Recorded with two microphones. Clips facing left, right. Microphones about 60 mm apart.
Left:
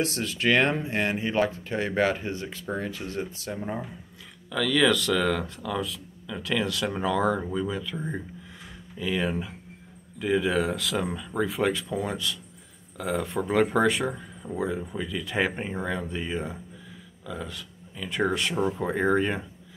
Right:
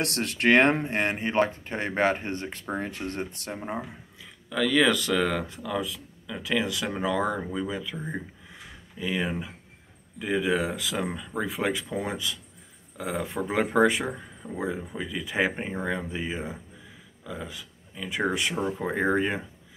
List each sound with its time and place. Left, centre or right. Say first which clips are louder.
0.0 s speech: right 1 dB; right
4.5 s speech: even; centre
11.7 s speech: left 1 dB; right
13.0 s speech: left 2 dB; centre
14.4 s speech: left 3 dB; centre
14.9 s speech: left 1 dB; centre